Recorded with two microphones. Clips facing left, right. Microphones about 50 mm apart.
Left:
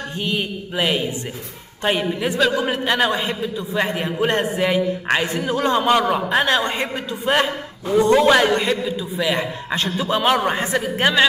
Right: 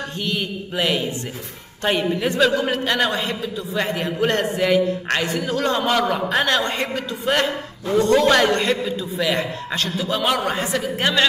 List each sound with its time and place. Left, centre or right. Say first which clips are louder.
0.1 s a man's voice: left 4 dB; centre
2.7 s a man's voice: left 1 dB; centre